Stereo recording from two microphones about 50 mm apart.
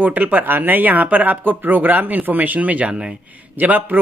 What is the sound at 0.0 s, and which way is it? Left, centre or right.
Speech, right.